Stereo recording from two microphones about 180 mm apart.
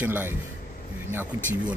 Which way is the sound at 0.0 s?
10° right (ahead or behind).